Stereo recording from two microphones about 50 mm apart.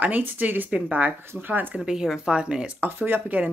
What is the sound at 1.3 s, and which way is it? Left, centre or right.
Speech, right.